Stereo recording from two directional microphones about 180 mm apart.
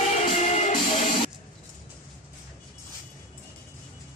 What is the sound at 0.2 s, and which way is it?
Music, 40° left (ahead or behind).